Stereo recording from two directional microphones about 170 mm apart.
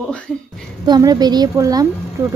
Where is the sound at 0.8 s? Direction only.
25° right (ahead or behind).